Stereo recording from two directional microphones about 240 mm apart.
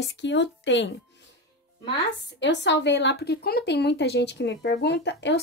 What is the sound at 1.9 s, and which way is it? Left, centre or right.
A woman's voice, left.